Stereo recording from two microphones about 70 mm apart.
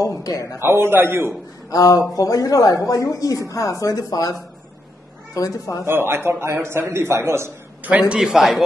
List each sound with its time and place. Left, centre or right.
0.0 s speech: left
0.6 s a man's voice: right
1.7 s speech: left
5.9 s a man's voice: right
8.1 s a man's voice: centre